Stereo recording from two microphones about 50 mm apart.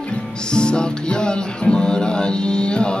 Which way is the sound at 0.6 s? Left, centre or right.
Centre.